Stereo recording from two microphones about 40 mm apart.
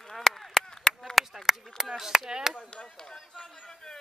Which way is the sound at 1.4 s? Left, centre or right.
Centre.